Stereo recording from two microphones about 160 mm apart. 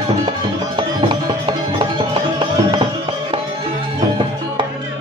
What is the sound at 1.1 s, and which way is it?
Music, 30° right (ahead or behind).